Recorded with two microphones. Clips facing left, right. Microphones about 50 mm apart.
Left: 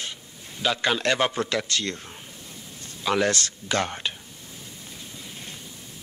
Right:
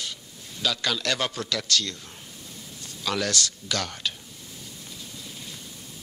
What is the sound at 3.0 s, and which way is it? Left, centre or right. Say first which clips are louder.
A man's voice: left 4 dB; left.